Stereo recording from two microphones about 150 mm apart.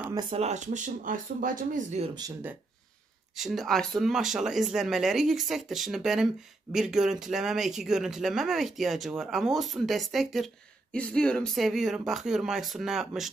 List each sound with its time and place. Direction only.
0.1 s speech: 30° right (ahead or behind)
0.4 s speech: 50° right (ahead or behind)
3.3 s speech: centre (ahead or behind)